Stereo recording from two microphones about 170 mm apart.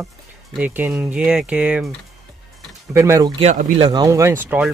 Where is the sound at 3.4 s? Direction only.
40° right (ahead or behind).